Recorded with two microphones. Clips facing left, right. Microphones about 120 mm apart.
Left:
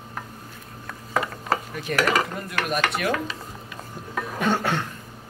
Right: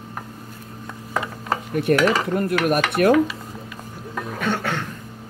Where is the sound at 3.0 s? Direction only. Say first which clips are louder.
Right 10 dB; 50° right (ahead or behind).